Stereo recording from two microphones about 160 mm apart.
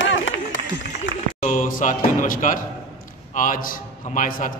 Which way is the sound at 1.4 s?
55° left (ahead or behind).